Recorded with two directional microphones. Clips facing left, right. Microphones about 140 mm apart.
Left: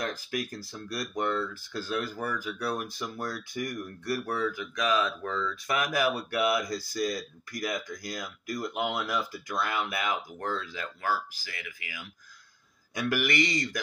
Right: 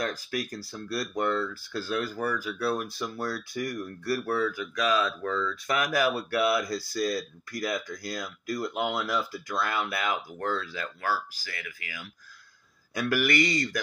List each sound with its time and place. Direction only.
0.0 s speech: 25° left (ahead or behind)
13.1 s speech: 20° left (ahead or behind)